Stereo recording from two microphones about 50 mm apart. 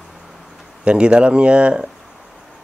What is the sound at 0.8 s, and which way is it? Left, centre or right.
Speech, right.